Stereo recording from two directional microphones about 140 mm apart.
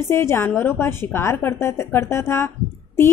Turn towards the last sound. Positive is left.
turn(degrees=20)  # may be behind; listen again after turning